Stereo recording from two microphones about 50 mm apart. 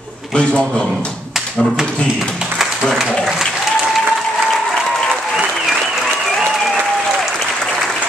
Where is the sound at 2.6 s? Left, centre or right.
Centre.